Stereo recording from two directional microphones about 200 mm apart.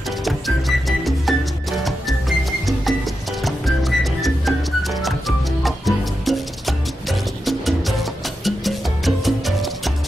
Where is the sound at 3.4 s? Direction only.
Centre (ahead or behind).